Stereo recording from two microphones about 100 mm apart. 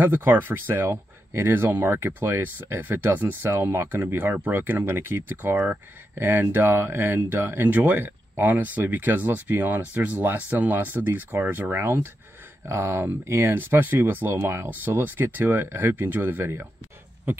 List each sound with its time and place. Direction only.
0.0 s speech: 20° right (ahead or behind)